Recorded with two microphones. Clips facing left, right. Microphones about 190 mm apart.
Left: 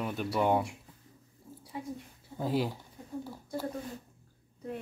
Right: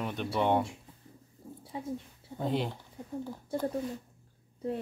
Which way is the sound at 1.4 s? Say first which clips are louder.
Right 4 dB; 65° right (ahead or behind).